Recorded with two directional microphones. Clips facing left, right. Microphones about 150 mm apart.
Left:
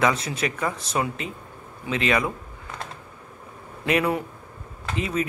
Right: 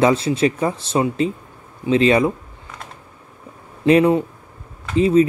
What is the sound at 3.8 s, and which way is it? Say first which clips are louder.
Speech: right 9 dB; 25° right (ahead or behind).